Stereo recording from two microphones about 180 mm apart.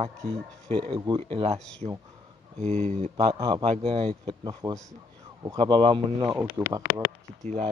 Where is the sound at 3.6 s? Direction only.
30° right (ahead or behind).